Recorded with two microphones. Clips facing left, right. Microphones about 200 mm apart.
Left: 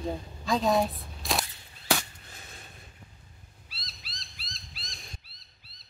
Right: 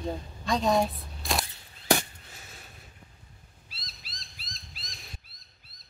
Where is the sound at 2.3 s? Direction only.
5° right (ahead or behind).